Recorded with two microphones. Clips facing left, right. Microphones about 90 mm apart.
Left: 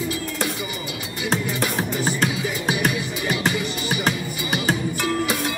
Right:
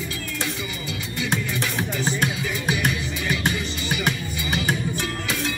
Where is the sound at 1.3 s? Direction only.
35° left (ahead or behind).